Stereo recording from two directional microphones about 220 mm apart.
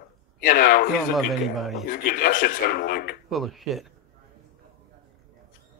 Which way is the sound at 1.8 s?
40° left (ahead or behind).